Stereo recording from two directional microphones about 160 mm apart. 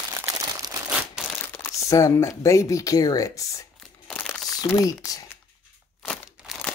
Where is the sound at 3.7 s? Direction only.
5° left (ahead or behind).